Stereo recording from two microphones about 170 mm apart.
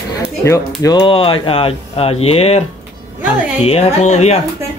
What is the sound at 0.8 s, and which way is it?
Speech, 25° left (ahead or behind).